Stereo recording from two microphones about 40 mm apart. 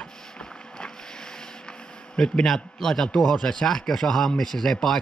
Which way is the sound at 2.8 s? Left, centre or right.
Centre.